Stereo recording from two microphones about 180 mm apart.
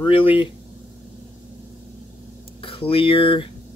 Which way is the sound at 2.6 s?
30° left (ahead or behind).